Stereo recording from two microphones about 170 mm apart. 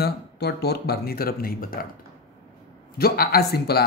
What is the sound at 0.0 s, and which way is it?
Speech, 70° left (ahead or behind).